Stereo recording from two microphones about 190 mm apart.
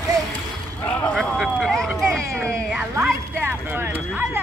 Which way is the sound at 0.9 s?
5° left (ahead or behind).